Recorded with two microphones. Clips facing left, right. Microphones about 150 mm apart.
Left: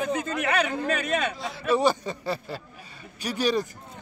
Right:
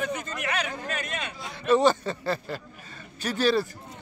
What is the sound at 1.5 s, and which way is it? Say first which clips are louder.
A man's voice: right 3 dB; 10° left (ahead or behind).